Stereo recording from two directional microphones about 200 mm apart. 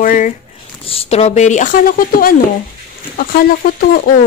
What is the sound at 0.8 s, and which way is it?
Speech, 30° left (ahead or behind).